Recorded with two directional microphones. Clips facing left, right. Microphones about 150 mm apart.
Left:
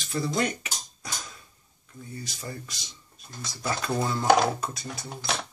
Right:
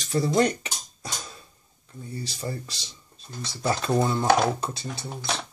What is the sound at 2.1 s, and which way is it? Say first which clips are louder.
Speech: right 5 dB; 30° right (ahead or behind).